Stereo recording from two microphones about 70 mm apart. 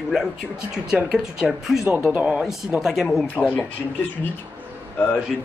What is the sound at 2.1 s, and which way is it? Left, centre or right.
Speech, centre.